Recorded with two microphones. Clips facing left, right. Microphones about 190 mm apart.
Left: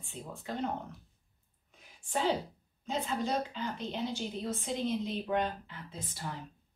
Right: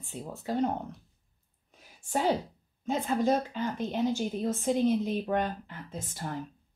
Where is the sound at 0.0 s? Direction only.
40° right (ahead or behind).